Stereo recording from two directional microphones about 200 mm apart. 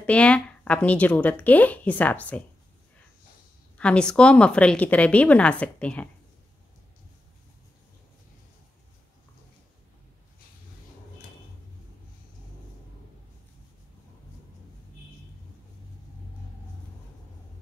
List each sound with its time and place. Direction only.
0.0 s speech: 5° left (ahead or behind)
3.7 s speech: 5° left (ahead or behind)